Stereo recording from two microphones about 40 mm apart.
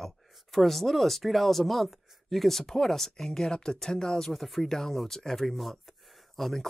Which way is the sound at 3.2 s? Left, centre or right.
Centre.